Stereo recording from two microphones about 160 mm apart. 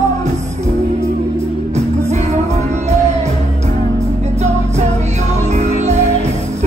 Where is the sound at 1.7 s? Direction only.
45° right (ahead or behind).